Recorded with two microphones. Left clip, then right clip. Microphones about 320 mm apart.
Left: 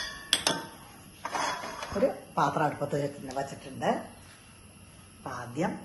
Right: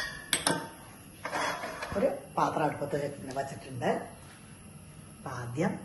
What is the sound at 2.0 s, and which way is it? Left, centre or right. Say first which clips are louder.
Speech: left 2 dB; left.